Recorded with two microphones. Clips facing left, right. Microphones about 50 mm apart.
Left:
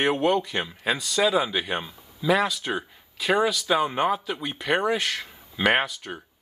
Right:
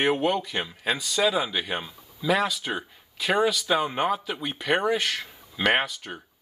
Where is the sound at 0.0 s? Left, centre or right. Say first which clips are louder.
Left 1 dB; centre.